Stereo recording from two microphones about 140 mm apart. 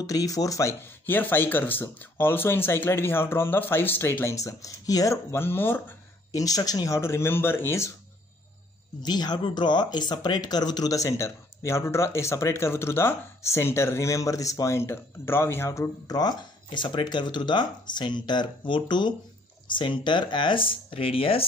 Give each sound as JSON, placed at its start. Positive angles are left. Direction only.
{"t": 0.0, "sound": "speech", "side_deg": 25}
{"t": 9.0, "sound": "speech", "side_deg": 30}